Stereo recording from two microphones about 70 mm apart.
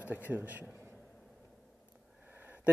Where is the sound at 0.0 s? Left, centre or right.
Right.